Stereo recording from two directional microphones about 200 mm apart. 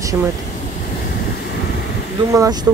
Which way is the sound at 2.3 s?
15° right (ahead or behind).